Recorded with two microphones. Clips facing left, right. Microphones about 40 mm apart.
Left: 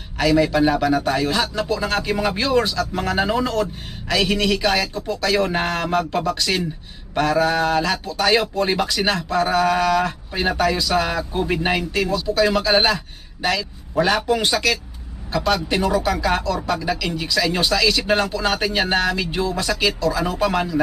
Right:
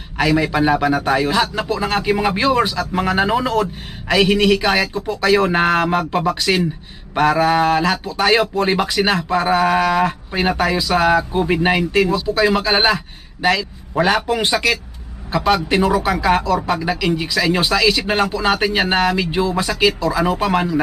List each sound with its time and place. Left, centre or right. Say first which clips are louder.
0.2 s speech: even; centre